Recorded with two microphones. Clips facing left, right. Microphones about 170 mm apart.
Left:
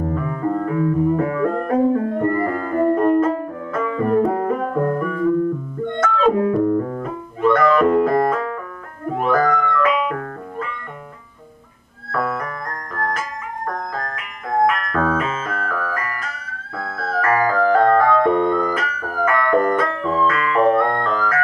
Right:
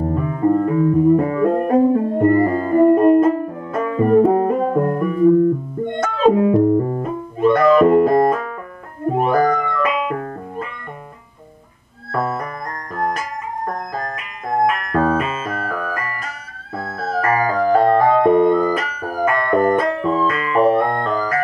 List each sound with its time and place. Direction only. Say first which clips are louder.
0.1 s music: right 5 dB; 25° right (ahead or behind)
12.1 s music: right 1 dB; 30° right (ahead or behind)
12.9 s music: right 3 dB; 15° right (ahead or behind)
15.7 s music: even; 20° right (ahead or behind)